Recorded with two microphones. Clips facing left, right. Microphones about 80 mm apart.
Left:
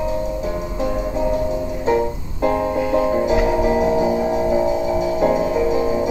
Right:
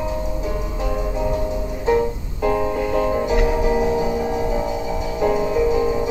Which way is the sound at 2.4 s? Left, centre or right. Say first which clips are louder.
Left 1 dB; centre.